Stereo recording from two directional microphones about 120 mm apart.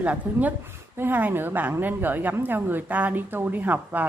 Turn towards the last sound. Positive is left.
turn(degrees=-15)  # may be behind; listen again after turning